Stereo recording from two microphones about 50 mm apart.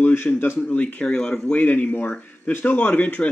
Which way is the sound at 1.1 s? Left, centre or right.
Centre.